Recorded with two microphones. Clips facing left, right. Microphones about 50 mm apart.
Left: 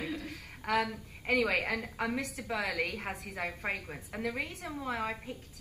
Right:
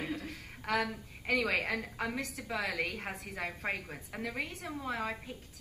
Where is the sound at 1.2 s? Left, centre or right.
Centre.